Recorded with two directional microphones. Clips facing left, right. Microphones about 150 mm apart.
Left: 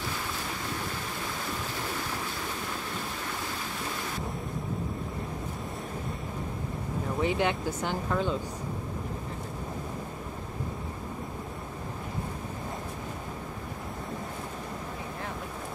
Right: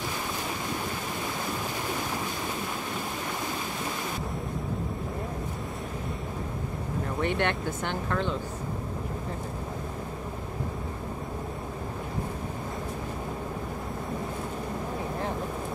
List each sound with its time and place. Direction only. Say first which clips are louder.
7.2 s speech: left 1 dB; 5° left (ahead or behind)